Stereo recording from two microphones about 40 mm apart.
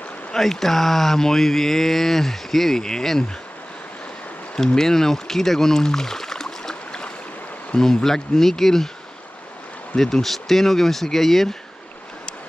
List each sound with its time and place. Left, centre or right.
0.4 s speech: centre
4.6 s speech: centre
6.7 s a sound: left
7.7 s speech: centre
9.9 s speech: centre